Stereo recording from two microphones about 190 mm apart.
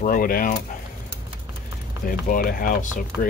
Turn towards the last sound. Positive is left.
turn(degrees=45)  # may be behind; listen again after turning